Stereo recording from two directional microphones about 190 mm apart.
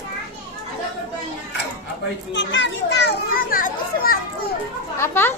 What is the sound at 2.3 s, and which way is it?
A child's voice, 70° left (ahead or behind).